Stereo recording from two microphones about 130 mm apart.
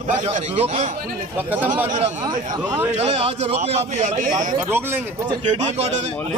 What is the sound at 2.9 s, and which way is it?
A man's voice, 55° right (ahead or behind).